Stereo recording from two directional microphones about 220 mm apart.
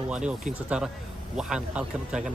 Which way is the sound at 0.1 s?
5° right (ahead or behind).